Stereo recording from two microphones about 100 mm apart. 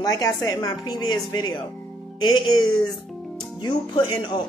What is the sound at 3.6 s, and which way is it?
Speech, 55° left (ahead or behind).